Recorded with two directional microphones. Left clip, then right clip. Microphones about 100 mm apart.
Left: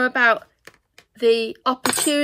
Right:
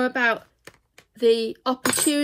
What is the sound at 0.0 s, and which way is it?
Speech, 45° left (ahead or behind).